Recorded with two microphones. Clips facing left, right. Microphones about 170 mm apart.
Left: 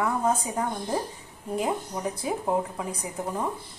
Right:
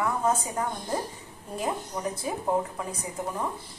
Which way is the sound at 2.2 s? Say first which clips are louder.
Left 1 dB; 15° left (ahead or behind).